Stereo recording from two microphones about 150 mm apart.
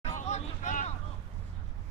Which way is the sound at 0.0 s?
50° left (ahead or behind).